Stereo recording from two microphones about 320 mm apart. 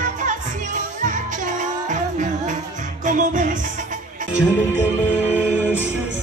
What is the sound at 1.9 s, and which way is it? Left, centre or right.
Music, right.